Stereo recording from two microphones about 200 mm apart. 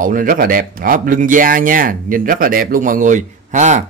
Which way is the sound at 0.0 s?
40° right (ahead or behind).